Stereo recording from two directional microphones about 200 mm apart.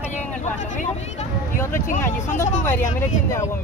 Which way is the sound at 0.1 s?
35° left (ahead or behind).